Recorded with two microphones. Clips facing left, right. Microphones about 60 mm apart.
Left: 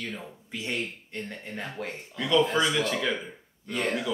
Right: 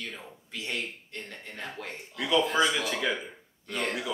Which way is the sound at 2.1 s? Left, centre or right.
Centre.